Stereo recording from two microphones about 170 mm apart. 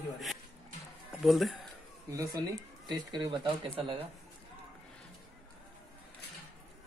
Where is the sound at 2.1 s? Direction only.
20° right (ahead or behind).